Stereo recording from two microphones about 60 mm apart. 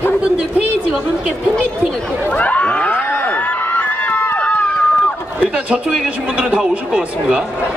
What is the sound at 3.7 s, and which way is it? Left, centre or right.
Run, left.